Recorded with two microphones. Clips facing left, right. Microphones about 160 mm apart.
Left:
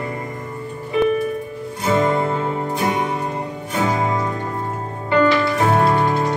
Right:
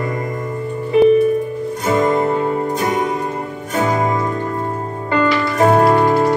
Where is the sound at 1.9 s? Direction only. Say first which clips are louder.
Right 2 dB; 45° right (ahead or behind).